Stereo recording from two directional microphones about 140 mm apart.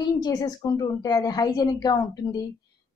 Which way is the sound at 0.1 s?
30° left (ahead or behind).